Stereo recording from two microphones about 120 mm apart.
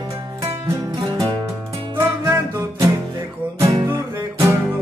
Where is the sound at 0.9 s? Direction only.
35° right (ahead or behind).